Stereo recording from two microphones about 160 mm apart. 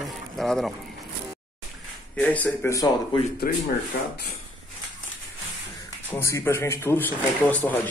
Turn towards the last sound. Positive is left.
turn(degrees=10)  # may be behind; listen again after turning